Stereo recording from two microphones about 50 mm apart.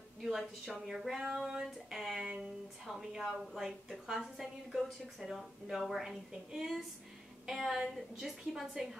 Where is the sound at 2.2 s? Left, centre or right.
Right.